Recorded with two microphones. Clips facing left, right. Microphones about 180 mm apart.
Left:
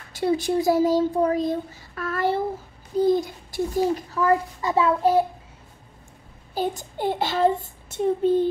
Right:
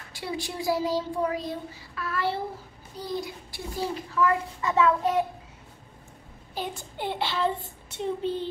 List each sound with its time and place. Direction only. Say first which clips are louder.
0.1 s a child's voice: left 12 dB; 45° left (ahead or behind)
6.5 s a child's voice: left 8 dB; 40° left (ahead or behind)